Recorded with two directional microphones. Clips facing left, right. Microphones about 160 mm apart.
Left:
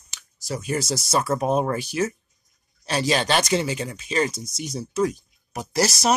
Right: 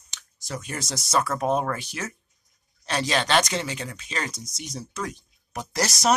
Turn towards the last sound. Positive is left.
turn(degrees=5)  # may be behind; listen again after turning